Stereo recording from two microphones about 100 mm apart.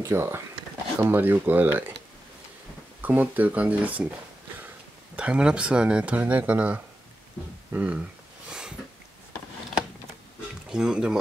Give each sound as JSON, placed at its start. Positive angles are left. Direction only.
{"t": 0.0, "sound": "speech", "side_deg": -25}
{"t": 3.0, "sound": "speech", "side_deg": -15}
{"t": 8.5, "sound": "a sound", "side_deg": -5}
{"t": 10.7, "sound": "speech", "side_deg": -5}